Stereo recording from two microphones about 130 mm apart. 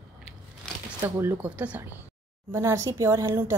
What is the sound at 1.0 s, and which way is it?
Speech, 20° right (ahead or behind).